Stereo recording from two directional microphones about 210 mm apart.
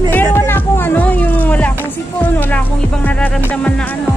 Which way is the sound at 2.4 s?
5° left (ahead or behind).